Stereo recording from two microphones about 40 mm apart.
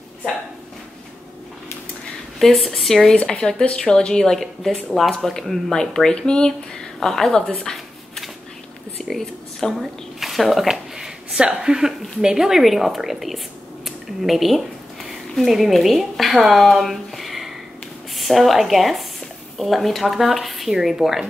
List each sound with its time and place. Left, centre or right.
2.3 s speech: centre
3.3 s speech: centre
4.3 s speech: centre
5.7 s speech: centre
9.1 s speech: centre
11.3 s speech: right; by 13.4 s centre
13.8 s a sound: centre
16.3 s speech: centre
16.6 s a sound: centre
18.1 s speech: centre